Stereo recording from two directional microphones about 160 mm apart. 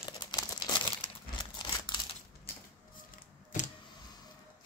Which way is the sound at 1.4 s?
25° left (ahead or behind).